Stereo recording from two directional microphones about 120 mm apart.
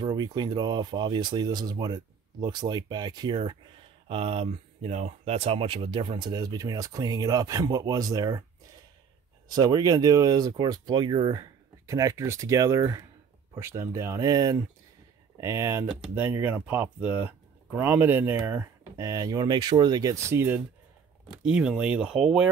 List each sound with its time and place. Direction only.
0.0 s speech: 35° right (ahead or behind)
4.1 s speech: 50° right (ahead or behind); by 8.5 s 30° right (ahead or behind)
9.5 s speech: 35° right (ahead or behind); by 20.6 s 20° right (ahead or behind)
21.5 s speech: 10° right (ahead or behind)